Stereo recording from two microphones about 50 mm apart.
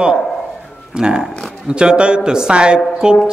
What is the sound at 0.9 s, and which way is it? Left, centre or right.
A man's voice, centre.